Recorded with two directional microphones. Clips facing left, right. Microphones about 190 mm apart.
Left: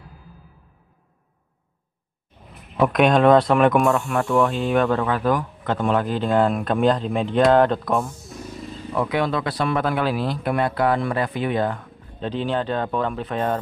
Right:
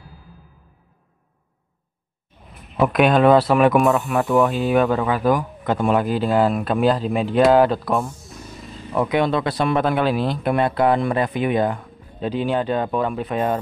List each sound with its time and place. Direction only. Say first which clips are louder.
2.8 s speech: right 1 dB; 5° right (ahead or behind)
8.9 s speech: right 3 dB; 20° right (ahead or behind)